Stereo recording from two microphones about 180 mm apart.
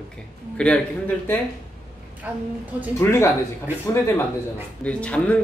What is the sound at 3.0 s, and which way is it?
Speech, 15° left (ahead or behind).